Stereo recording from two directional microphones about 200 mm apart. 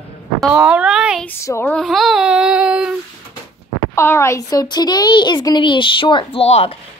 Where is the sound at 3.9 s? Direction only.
15° left (ahead or behind); by 6.8 s 30° left (ahead or behind).